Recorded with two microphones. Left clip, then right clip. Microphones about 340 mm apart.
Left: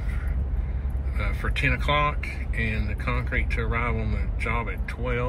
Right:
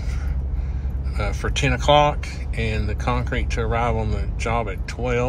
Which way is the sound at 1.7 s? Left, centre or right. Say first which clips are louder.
Right 9 dB; right.